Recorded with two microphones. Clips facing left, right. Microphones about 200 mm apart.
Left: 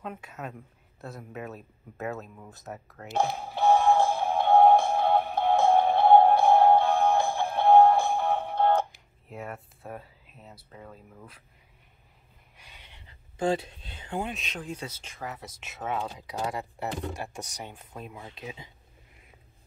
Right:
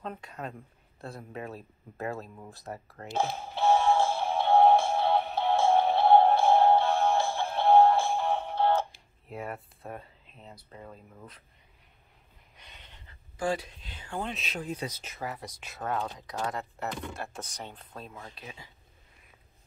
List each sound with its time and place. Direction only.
0.0 s speech: 5° left (ahead or behind)
3.1 s music: 15° left (ahead or behind)
8.2 s music: 55° left (ahead or behind)
9.3 s speech: centre (ahead or behind)
12.5 s a sound: 10° left (ahead or behind)
13.4 s speech: 25° left (ahead or behind)
14.2 s speech: centre (ahead or behind)
15.3 s speech: 5° left (ahead or behind); by 18.7 s 20° left (ahead or behind)